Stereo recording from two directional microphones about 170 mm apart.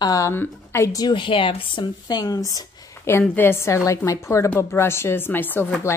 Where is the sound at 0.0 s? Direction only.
20° left (ahead or behind).